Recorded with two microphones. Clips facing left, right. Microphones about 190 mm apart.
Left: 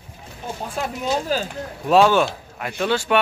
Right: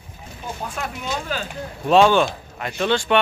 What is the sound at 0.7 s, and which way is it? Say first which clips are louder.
Speech: left 7 dB; 35° left (ahead or behind).